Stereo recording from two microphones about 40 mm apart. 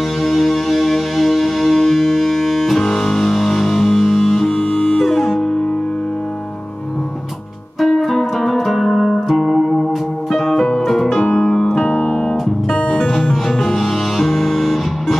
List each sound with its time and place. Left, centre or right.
0.2 s music: centre
7.8 s music: centre
10.5 s music: centre
11.2 s piano: centre
11.5 s electric piano: centre
12.1 s music: centre